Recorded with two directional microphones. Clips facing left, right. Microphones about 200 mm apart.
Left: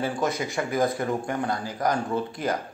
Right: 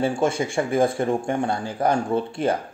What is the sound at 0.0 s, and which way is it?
Speech, 30° right (ahead or behind).